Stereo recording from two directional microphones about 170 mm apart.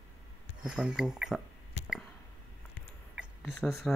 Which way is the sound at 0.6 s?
5° right (ahead or behind).